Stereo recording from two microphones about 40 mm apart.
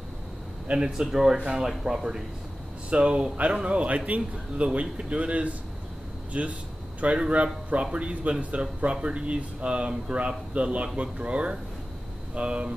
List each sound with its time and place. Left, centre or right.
0.7 s speech: centre
2.9 s speech: right